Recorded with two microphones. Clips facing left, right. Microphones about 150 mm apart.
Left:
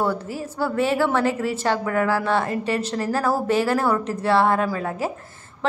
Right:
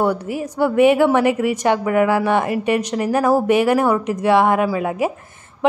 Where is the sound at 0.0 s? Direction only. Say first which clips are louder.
Right 5 dB; 15° right (ahead or behind).